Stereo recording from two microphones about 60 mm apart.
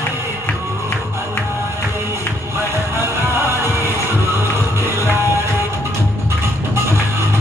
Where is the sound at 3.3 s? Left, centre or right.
Right.